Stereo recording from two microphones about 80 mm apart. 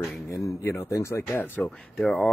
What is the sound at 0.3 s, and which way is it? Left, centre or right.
Speech, left.